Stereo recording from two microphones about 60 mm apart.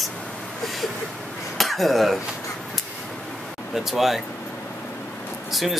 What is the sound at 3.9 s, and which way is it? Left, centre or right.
Speech, centre.